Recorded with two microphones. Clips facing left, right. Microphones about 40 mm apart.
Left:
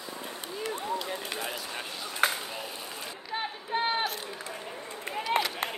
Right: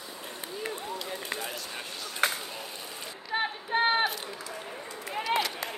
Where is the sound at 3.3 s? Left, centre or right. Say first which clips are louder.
Right 3 dB; right.